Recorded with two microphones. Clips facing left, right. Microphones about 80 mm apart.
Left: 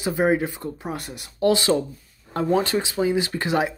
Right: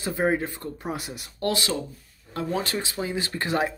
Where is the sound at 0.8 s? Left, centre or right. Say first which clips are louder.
Left 1 dB; centre.